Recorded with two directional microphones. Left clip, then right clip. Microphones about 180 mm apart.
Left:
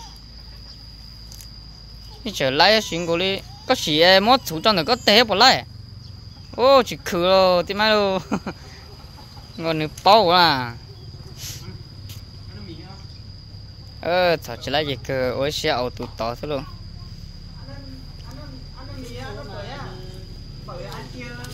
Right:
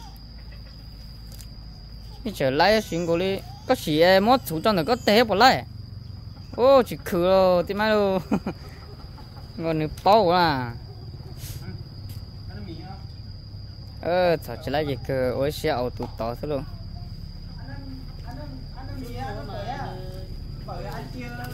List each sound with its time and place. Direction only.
2.2 s speech: 5° right (ahead or behind)
8.2 s speech: 15° right (ahead or behind)
9.6 s speech: centre (ahead or behind)
14.0 s speech: 5° right (ahead or behind)
19.1 s a sound: 65° right (ahead or behind)